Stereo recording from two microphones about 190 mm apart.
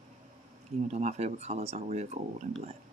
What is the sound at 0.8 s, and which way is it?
Speech, 35° right (ahead or behind).